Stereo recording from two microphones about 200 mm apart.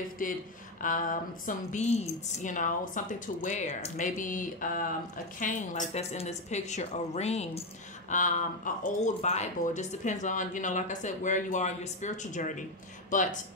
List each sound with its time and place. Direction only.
0.2 s speech: 40° left (ahead or behind)